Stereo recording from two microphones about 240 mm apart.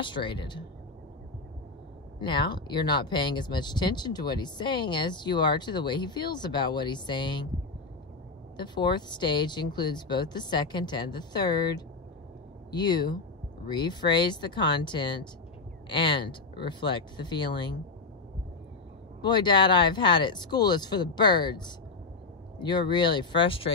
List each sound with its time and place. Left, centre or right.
0.0 s speech: centre
2.1 s speech: centre
8.5 s speech: centre
19.2 s speech: centre